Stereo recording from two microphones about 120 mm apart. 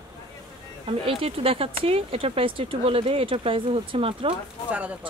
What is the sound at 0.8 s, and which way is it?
Speech, 50° right (ahead or behind).